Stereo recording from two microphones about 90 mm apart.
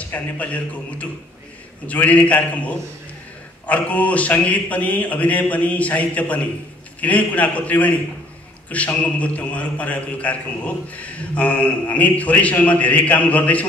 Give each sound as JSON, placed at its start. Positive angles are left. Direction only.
{"t": 0.0, "sound": "a man's voice", "side_deg": 15}